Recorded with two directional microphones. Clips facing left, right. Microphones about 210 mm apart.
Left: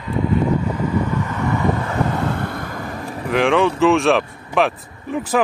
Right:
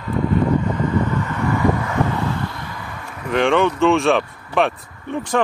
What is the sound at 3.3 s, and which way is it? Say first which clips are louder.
Speech: even; centre (ahead or behind).